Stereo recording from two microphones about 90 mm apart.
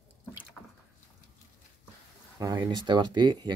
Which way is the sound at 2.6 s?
55° right (ahead or behind).